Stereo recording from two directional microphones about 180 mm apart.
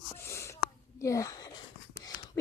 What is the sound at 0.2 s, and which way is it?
Whispering, 15° left (ahead or behind).